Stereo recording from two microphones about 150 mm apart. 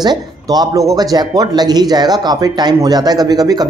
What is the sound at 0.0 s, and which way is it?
Speech, 25° right (ahead or behind).